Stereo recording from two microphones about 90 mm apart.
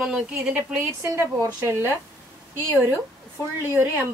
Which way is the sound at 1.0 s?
35° right (ahead or behind).